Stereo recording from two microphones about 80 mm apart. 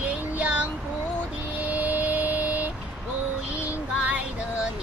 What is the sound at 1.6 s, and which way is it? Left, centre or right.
Vehicle, centre.